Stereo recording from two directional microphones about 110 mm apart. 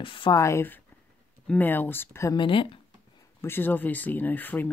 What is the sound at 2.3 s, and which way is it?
Speech, 50° left (ahead or behind).